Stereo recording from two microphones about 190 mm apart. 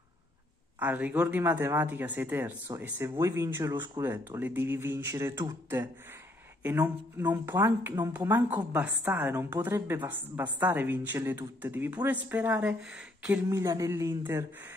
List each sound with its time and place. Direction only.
0.7 s speech: 10° right (ahead or behind)
13.5 s speech: 15° right (ahead or behind)